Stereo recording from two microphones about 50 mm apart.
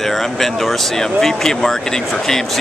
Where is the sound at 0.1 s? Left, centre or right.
Centre.